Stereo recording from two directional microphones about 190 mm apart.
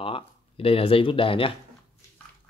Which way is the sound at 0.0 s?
30° left (ahead or behind).